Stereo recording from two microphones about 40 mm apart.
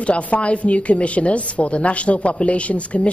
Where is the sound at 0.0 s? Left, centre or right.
Left.